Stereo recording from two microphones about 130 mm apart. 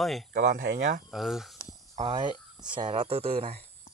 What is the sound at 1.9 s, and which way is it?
Speech, 60° right (ahead or behind).